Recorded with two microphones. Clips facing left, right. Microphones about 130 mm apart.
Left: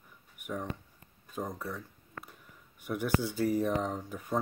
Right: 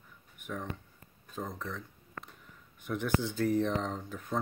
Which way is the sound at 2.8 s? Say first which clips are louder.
Left 1 dB; 10° left (ahead or behind).